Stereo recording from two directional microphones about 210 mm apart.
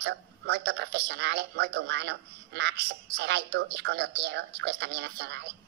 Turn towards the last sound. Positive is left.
turn(degrees=-55)  # may be behind; listen again after turning